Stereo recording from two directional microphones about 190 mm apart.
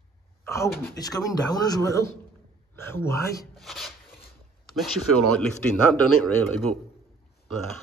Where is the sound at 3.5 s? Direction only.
Centre (ahead or behind).